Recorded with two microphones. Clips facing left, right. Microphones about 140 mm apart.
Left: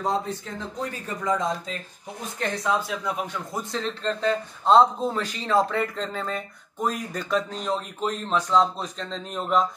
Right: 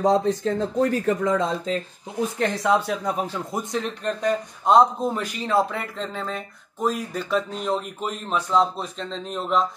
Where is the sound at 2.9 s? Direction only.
40° right (ahead or behind).